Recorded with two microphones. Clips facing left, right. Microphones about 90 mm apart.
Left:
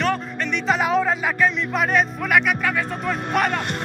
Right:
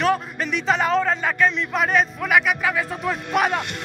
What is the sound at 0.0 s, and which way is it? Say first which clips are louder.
A man's voice: right 2 dB; 5° right (ahead or behind).